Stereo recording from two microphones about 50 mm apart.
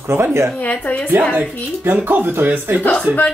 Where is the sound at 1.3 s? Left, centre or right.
Right.